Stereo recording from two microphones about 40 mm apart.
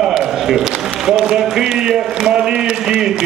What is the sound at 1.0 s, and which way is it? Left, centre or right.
A man's voice, centre.